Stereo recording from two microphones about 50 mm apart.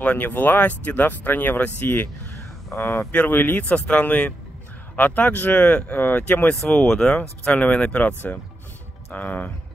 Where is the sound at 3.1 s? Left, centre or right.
Left.